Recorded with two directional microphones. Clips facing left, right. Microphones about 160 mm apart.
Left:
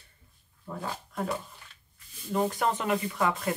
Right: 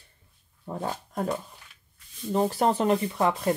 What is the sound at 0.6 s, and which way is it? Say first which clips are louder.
Speech: right 4 dB; 30° right (ahead or behind).